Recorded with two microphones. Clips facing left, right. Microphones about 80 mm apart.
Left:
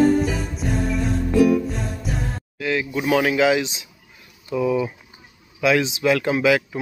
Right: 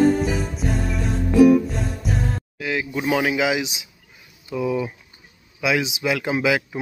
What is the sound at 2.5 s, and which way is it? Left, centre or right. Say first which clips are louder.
Speech: left 4 dB; centre.